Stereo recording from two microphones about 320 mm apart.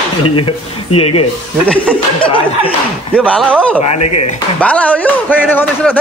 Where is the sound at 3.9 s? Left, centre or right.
Left.